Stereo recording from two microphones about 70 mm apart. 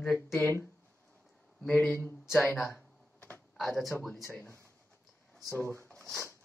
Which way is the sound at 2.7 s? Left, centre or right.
Left.